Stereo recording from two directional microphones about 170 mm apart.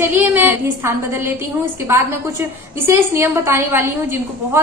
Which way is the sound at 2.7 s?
15° right (ahead or behind).